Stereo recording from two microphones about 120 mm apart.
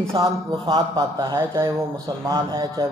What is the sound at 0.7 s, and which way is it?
Speech, 30° right (ahead or behind).